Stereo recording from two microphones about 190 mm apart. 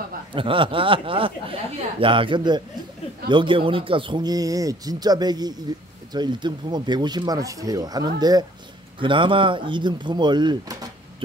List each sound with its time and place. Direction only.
0.3 s speech: 25° right (ahead or behind)